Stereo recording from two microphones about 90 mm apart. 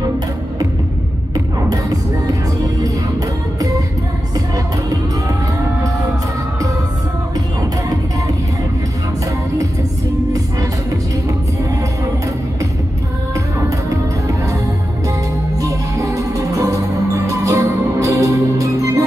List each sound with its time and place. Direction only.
1.3 s music: 45° right (ahead or behind)
15.6 s music: 35° right (ahead or behind)